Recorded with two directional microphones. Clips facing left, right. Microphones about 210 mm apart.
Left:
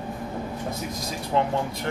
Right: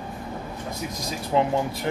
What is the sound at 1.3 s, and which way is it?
Speech, 10° right (ahead or behind).